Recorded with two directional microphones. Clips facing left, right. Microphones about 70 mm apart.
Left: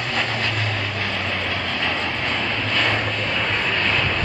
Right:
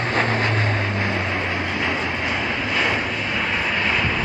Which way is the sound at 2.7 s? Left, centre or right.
Centre.